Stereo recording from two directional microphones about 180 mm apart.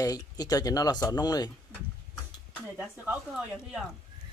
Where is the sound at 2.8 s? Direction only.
5° right (ahead or behind).